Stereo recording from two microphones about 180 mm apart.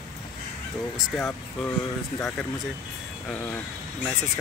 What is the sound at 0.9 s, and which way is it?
Speech, 5° left (ahead or behind).